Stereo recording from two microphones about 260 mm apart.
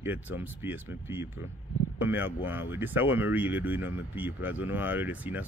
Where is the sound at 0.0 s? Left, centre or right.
Centre.